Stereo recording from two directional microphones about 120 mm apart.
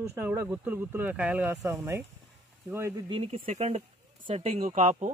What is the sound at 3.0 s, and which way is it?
Speech, 50° right (ahead or behind).